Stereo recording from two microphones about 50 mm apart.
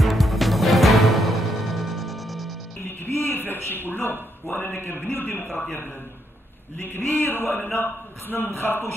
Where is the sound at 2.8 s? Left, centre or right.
Left.